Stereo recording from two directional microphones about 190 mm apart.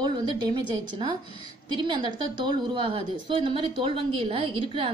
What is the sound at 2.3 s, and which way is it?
A woman's voice, 25° right (ahead or behind).